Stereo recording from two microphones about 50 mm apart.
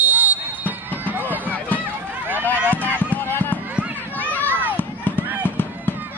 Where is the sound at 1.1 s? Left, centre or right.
Right.